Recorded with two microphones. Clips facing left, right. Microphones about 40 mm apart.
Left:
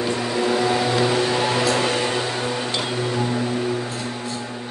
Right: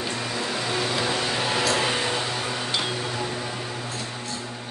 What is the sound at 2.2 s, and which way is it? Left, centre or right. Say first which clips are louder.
Music: left 4 dB; left.